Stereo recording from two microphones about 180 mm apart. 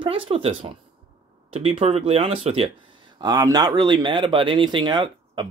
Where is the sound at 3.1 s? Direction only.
20° right (ahead or behind).